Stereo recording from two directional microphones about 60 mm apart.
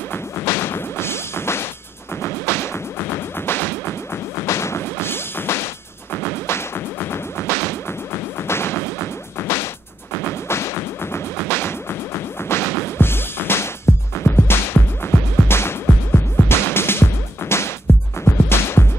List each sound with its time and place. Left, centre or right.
0.1 s smash: left
2.2 s music: left
6.1 s whip: left
10.1 s music: left